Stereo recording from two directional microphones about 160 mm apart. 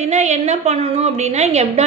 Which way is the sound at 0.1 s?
45° right (ahead or behind).